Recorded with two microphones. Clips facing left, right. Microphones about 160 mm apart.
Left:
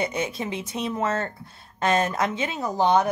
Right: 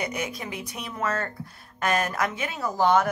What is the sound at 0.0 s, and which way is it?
Speech, 25° left (ahead or behind).